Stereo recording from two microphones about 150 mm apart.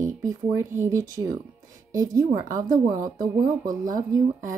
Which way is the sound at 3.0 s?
65° right (ahead or behind).